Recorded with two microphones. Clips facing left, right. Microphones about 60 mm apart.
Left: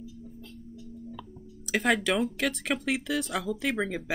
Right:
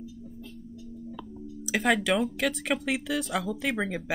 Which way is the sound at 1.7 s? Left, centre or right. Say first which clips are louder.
Right 1 dB; centre.